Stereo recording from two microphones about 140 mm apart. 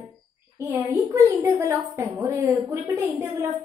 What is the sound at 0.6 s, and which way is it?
A woman's voice, 20° right (ahead or behind).